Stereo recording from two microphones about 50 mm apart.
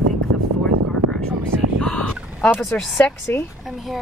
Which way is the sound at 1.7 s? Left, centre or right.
Left.